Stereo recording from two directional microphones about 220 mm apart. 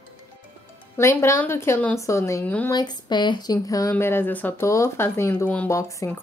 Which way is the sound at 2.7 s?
20° left (ahead or behind).